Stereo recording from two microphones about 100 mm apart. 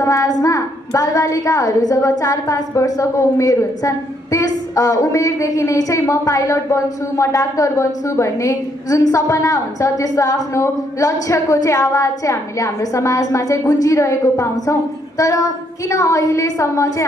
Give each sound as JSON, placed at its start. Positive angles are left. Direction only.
{"t": 0.0, "sound": "a woman's voice", "side_deg": 35}